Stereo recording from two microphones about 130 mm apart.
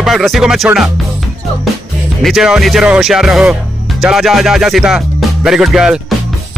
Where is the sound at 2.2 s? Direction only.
5° right (ahead or behind).